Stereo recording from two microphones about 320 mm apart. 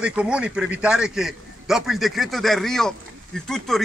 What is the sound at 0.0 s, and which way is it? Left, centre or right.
A man's voice, centre.